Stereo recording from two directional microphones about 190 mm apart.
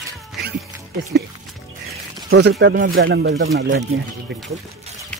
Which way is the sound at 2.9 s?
75° right (ahead or behind).